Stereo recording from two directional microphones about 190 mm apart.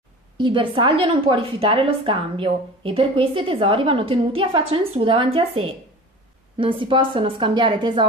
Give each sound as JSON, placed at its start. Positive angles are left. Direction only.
{"t": 0.4, "sound": "a woman's voice", "side_deg": -25}